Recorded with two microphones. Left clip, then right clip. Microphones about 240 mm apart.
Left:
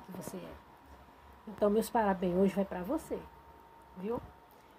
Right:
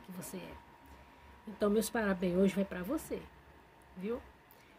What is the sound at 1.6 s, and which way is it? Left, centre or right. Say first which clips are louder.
Speech: left 3 dB; centre.